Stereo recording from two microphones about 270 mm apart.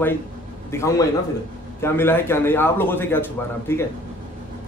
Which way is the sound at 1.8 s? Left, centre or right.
Centre.